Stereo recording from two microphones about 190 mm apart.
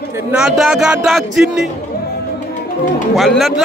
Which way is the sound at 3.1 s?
Centre (ahead or behind).